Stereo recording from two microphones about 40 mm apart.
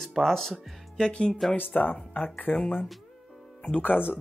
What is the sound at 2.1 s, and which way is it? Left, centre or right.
Speech, left.